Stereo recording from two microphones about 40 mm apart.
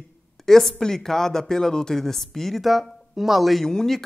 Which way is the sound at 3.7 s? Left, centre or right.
Centre.